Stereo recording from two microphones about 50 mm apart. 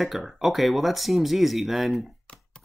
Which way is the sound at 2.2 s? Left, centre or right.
Left.